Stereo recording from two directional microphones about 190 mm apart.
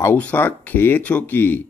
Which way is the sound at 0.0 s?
10° left (ahead or behind).